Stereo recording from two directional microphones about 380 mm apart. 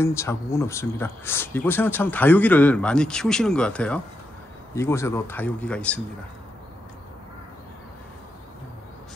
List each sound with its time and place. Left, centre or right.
0.0 s speech: centre